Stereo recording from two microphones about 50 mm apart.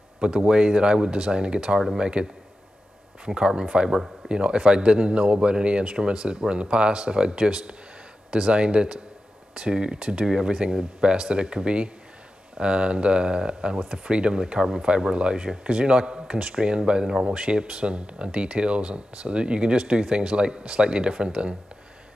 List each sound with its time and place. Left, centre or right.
0.2 s speech: centre
3.3 s speech: centre